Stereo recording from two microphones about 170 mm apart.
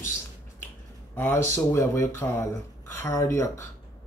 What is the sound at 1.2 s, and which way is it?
Speech, 15° left (ahead or behind).